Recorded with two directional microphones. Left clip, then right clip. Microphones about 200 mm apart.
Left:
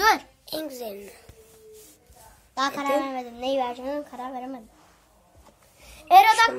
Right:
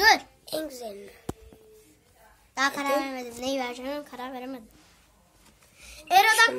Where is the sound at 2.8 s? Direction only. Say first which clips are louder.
Left 2 dB; 45° right (ahead or behind); by 4.6 s 60° right (ahead or behind).